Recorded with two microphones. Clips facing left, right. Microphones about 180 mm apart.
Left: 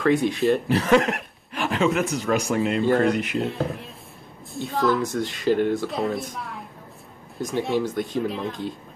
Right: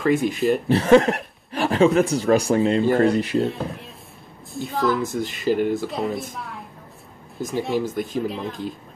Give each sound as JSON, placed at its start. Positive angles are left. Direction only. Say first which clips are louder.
{"t": 0.0, "sound": "speech", "louder": "even", "side_deg": 0}
{"t": 0.7, "sound": "speech", "louder": "right 4 dB", "side_deg": -30}
{"t": 2.8, "sound": "speech", "louder": "right 2 dB", "side_deg": 0}
{"t": 3.1, "sound": "speech", "louder": "right 2 dB", "side_deg": -30}
{"t": 3.4, "sound": "speech", "louder": "even", "side_deg": 0}